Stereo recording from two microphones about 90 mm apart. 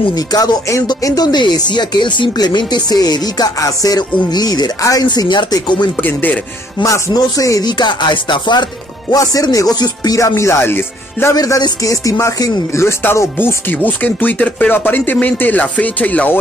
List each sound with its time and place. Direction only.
0.1 s speech: 50° left (ahead or behind)
5.9 s speech: 20° left (ahead or behind)
6.8 s music: 40° left (ahead or behind)
7.7 s music: 55° left (ahead or behind)
9.1 s music: 40° left (ahead or behind); by 11.3 s 25° left (ahead or behind)
11.3 s music: 45° left (ahead or behind)
12.8 s speech: 30° left (ahead or behind)